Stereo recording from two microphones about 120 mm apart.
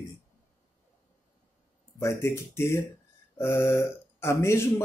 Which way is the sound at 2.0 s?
25° left (ahead or behind).